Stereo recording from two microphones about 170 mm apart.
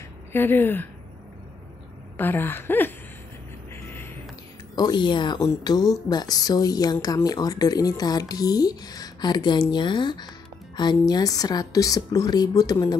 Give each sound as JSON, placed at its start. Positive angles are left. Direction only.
{"t": 0.3, "sound": "speech", "side_deg": 10}
{"t": 2.1, "sound": "speech", "side_deg": 10}
{"t": 3.7, "sound": "music", "side_deg": 10}
{"t": 4.7, "sound": "speech", "side_deg": 25}